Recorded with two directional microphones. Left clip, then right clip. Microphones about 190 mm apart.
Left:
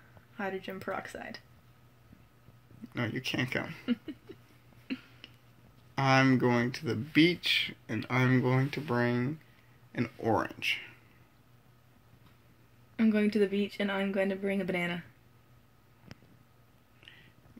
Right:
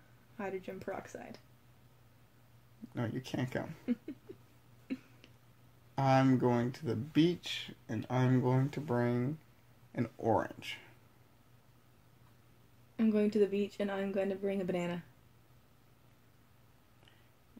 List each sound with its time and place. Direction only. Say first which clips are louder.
0.4 s speech: left 4 dB; 10° left (ahead or behind)
2.9 s speech: left 6 dB; 25° right (ahead or behind)
3.9 s speech: left 3 dB; 10° left (ahead or behind)
5.9 s speech: left 3 dB; 20° right (ahead or behind)
10.1 s speech: left 2 dB; 5° right (ahead or behind)
10.4 s speech: left 9 dB; 20° right (ahead or behind)
12.9 s speech: left 2 dB; 10° left (ahead or behind)